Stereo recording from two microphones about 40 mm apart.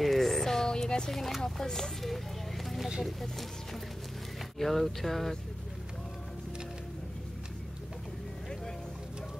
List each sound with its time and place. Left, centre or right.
0.0 s music: centre
1.1 s speech: centre
4.6 s speech: centre